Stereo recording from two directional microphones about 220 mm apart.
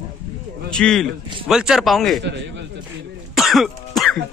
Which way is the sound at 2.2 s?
50° right (ahead or behind).